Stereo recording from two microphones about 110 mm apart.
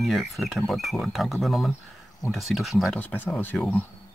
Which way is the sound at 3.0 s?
15° left (ahead or behind).